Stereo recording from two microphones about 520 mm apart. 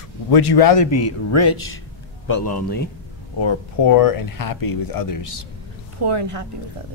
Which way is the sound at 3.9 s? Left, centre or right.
Left.